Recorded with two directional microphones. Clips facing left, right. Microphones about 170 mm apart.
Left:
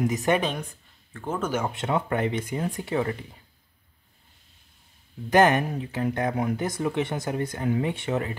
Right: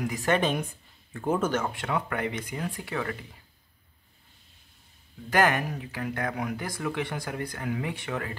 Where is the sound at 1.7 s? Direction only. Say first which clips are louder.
Left 4 dB; 25° left (ahead or behind).